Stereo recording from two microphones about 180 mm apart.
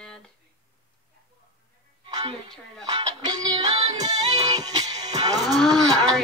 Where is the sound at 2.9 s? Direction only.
25° right (ahead or behind).